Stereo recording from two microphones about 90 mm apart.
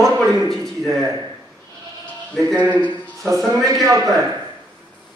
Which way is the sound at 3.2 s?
40° right (ahead or behind).